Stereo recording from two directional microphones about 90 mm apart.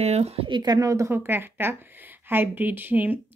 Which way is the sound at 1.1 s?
25° right (ahead or behind).